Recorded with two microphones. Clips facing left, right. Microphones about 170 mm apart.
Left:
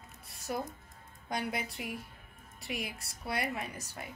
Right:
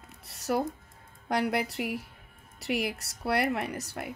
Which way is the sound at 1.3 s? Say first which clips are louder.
Right 8 dB; 70° right (ahead or behind).